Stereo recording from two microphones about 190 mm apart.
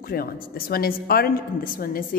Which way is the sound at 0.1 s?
50° left (ahead or behind).